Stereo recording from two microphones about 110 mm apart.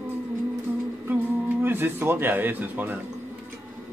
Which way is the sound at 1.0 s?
20° right (ahead or behind).